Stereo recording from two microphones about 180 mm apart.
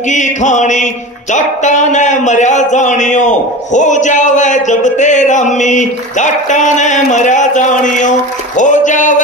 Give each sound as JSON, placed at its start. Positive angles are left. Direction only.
{"t": 0.1, "sound": "a man's voice", "side_deg": 40}